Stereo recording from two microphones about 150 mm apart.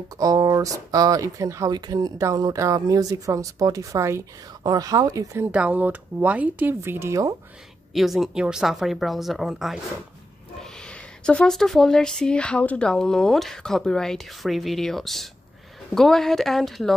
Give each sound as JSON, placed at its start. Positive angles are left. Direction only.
{"t": 0.2, "sound": "speech", "side_deg": -25}
{"t": 5.5, "sound": "speech", "side_deg": -10}
{"t": 7.9, "sound": "speech", "side_deg": 0}